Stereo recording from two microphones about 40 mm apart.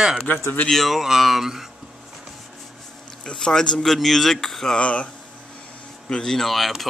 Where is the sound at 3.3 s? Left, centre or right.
Centre.